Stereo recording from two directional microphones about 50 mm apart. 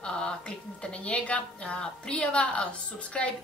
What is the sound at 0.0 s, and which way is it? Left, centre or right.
A woman's voice, centre.